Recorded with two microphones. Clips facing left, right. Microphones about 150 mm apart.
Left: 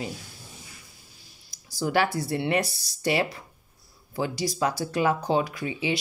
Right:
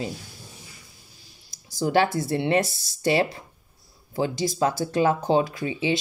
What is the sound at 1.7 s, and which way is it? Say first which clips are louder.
Speech: right 3 dB; 25° right (ahead or behind).